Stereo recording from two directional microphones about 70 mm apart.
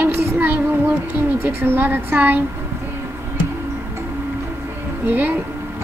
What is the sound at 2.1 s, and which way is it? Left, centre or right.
Speech, right.